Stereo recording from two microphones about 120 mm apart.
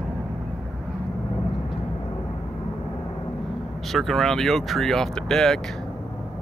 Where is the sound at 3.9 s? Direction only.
Centre (ahead or behind).